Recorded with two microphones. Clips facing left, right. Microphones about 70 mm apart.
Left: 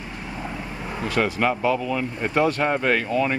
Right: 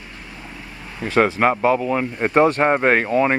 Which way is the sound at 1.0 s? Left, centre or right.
Right.